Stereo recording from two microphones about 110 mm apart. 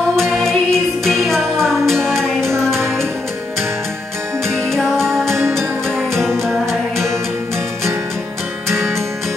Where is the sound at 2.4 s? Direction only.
25° right (ahead or behind).